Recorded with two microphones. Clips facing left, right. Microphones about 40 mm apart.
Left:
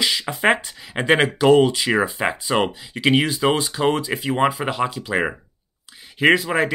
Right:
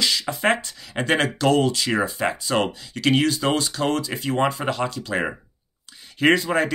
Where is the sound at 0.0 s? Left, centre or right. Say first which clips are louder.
Left 2 dB; centre.